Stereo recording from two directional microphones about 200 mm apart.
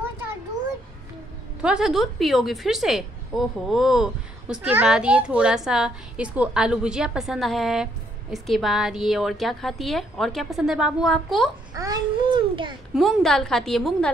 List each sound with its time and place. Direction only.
1.6 s a woman's voice: 5° right (ahead or behind)
11.7 s babbling: 20° right (ahead or behind)
12.9 s a woman's voice: centre (ahead or behind)